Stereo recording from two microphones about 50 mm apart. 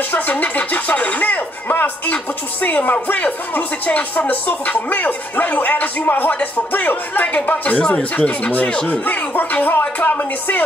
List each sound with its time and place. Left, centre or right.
0.1 s speech: left
7.7 s speech: left
9.0 s speech: left